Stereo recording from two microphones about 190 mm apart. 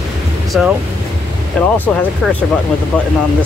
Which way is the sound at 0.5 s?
5° right (ahead or behind).